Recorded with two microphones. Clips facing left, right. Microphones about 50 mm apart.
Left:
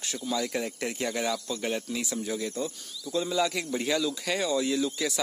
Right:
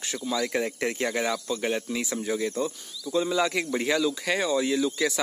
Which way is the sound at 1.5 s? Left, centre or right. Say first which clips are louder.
Right 3 dB; centre.